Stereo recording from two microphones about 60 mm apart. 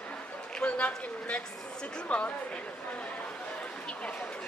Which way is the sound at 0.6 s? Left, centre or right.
Left.